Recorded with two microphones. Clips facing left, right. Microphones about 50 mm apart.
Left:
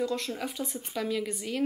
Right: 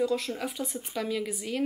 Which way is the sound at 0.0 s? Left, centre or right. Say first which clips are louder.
Right 3 dB; centre.